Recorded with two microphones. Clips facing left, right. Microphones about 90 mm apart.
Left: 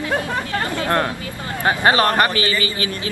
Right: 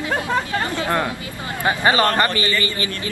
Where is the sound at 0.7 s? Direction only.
20° right (ahead or behind).